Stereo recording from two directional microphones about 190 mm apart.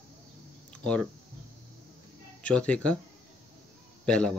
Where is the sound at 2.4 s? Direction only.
5° left (ahead or behind).